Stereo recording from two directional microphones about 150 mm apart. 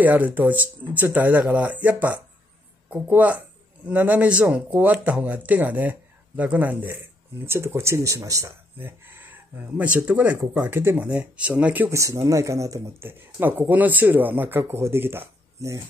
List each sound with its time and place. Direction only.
0.0 s speech: 10° right (ahead or behind)